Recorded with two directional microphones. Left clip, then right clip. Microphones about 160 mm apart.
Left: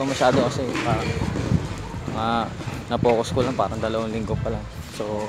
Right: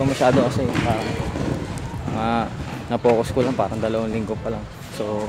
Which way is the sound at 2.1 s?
15° right (ahead or behind).